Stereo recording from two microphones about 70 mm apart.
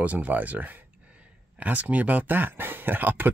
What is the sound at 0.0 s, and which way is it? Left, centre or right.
Speech, right.